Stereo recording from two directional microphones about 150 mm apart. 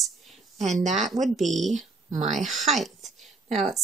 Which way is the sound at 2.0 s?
50° right (ahead or behind).